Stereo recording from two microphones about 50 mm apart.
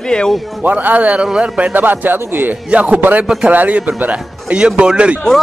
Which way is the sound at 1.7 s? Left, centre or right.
Right.